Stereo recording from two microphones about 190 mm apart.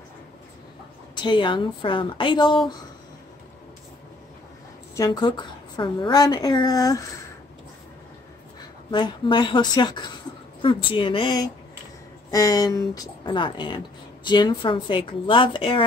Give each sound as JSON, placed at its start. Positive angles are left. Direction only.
{"t": 1.1, "sound": "a woman's voice", "side_deg": 25}
{"t": 4.9, "sound": "a woman's voice", "side_deg": 20}
{"t": 8.9, "sound": "a woman's voice", "side_deg": 25}